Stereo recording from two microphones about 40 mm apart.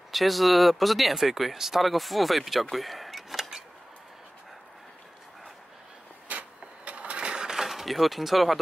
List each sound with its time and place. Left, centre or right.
0.1 s speech: centre
2.7 s power windows: centre
6.2 s a sound: right
7.4 s speech: centre